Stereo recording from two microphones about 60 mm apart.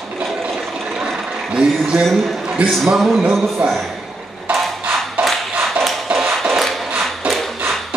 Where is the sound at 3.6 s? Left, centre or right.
Centre.